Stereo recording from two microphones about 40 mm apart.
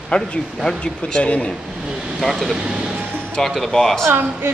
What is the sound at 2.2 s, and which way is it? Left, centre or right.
Speech, centre.